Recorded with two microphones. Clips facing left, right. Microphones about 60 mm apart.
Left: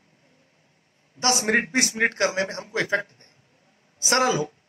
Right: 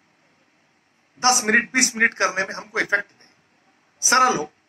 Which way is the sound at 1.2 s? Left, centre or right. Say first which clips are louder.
Right 4 dB; right.